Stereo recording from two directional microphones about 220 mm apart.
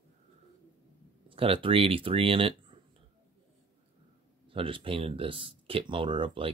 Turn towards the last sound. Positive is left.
turn(degrees=-20)  # may be behind; listen again after turning